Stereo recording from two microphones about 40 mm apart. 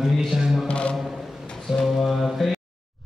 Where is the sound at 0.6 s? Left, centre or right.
Left.